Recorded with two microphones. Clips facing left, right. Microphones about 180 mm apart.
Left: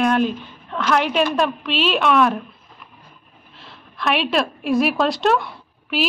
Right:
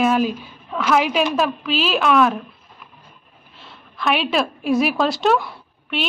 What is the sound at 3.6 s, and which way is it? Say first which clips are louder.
A woman's voice: even; centre (ahead or behind).